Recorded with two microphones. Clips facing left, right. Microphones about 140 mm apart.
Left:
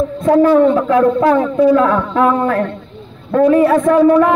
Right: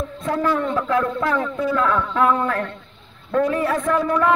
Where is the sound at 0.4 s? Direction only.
20° left (ahead or behind).